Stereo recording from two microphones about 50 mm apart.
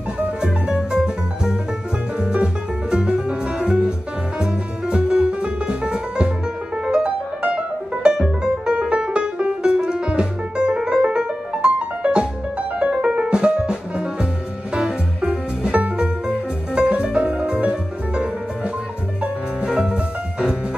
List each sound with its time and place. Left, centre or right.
0.4 s music: centre